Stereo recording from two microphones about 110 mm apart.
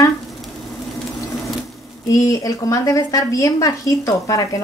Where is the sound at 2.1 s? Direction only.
30° left (ahead or behind).